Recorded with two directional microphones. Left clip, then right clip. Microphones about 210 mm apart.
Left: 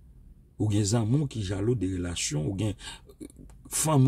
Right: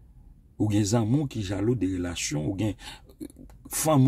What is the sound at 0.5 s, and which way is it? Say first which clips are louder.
Speech: right 3 dB; 5° left (ahead or behind).